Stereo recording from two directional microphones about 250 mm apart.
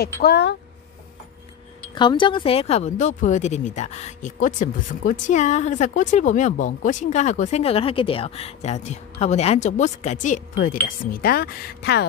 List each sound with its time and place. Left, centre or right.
0.0 s speech: left
2.0 s speech: centre; by 12.1 s left